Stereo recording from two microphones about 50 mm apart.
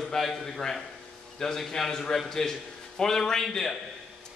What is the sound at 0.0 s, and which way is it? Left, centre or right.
A man's voice, centre.